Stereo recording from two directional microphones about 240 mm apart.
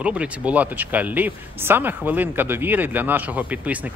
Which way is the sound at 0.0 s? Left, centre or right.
Centre.